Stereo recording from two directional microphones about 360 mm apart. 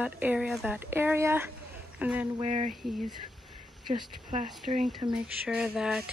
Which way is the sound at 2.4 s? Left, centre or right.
Centre.